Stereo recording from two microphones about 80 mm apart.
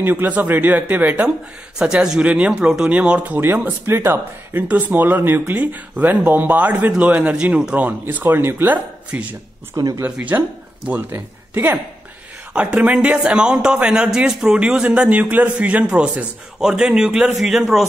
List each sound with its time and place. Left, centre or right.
0.0 s speech: right
1.8 s speech: centre
9.8 s speech: right
10.3 s speech: right
12.5 s speech: centre